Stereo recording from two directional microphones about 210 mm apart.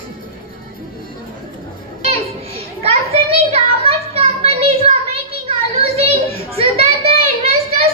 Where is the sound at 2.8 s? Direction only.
30° right (ahead or behind).